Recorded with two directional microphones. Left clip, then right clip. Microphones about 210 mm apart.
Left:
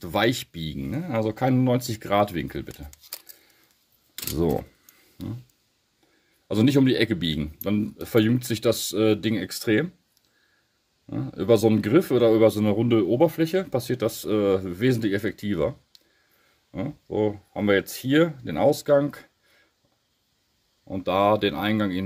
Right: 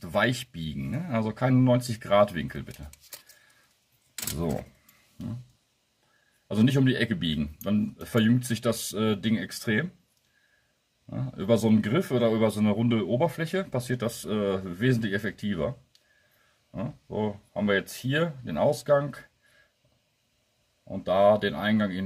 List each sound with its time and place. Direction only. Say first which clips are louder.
0.0 s speech: left 3 dB; 35° left (ahead or behind)
6.4 s speech: left 5 dB; 40° left (ahead or behind)
11.1 s speech: left 5 dB; 40° left (ahead or behind)
16.7 s speech: left 6 dB; 40° left (ahead or behind)
21.0 s speech: even; 45° left (ahead or behind)